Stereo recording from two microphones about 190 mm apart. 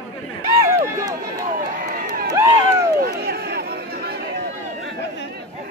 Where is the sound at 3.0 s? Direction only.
55° right (ahead or behind).